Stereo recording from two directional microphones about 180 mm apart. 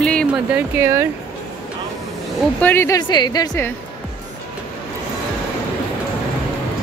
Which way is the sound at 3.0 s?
25° left (ahead or behind).